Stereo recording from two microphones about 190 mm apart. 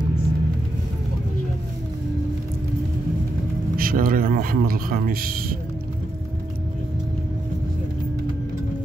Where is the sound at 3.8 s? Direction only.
50° right (ahead or behind).